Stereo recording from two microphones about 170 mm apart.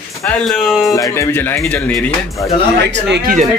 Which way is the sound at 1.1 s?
15° left (ahead or behind).